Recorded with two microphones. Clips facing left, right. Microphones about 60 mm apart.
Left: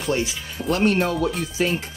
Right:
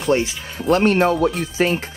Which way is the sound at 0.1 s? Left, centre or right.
Right.